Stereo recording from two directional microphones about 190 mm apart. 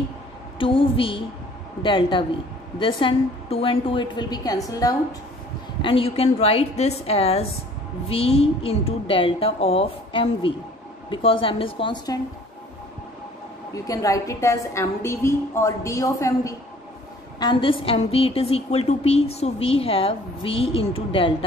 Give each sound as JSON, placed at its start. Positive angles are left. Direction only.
{"t": 0.6, "sound": "a woman's voice", "side_deg": 25}
{"t": 13.8, "sound": "a woman's voice", "side_deg": 15}
{"t": 17.4, "sound": "a woman's voice", "side_deg": 25}